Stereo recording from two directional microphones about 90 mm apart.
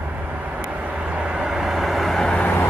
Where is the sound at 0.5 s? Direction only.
15° right (ahead or behind).